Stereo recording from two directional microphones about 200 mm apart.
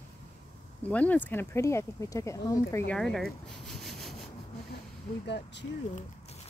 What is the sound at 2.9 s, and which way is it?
Speech, centre (ahead or behind).